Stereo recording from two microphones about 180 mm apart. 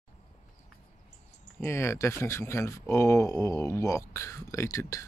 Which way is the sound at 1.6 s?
15° left (ahead or behind).